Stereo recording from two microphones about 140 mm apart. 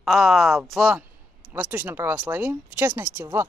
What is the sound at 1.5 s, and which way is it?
Speech, 15° right (ahead or behind).